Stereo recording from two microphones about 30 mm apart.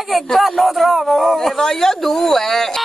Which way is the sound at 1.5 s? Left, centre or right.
Centre.